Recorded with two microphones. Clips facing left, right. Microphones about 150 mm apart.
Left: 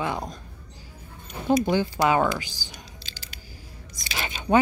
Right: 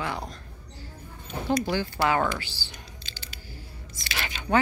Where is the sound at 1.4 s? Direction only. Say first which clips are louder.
Left 5 dB; 20° left (ahead or behind).